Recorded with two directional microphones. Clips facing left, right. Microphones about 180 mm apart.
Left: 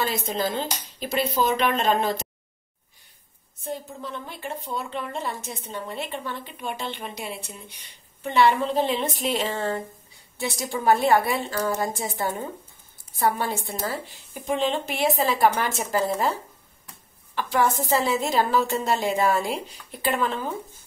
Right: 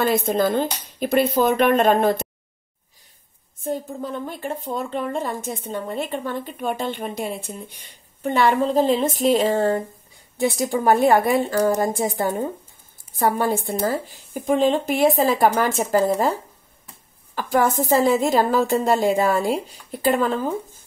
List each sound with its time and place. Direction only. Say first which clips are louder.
0.0 s speech: right 7 dB; 55° right (ahead or behind)
3.6 s speech: right 6 dB; 45° right (ahead or behind)
17.4 s speech: right 4 dB; 40° right (ahead or behind)